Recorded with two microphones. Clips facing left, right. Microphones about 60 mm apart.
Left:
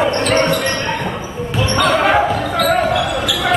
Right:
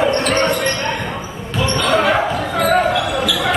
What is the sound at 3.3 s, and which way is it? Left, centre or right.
Basketball bounce, centre.